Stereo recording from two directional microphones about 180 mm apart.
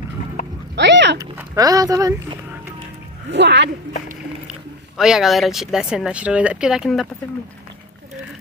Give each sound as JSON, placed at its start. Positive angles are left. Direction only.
{"t": 0.7, "sound": "a sound", "side_deg": -75}
{"t": 1.1, "sound": "speech", "side_deg": -15}
{"t": 3.3, "sound": "speech", "side_deg": -75}
{"t": 4.5, "sound": "speech", "side_deg": -5}